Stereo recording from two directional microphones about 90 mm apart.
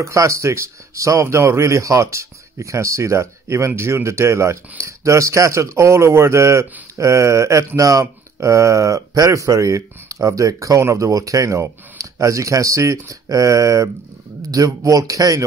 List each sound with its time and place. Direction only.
0.0 s speech: 35° right (ahead or behind)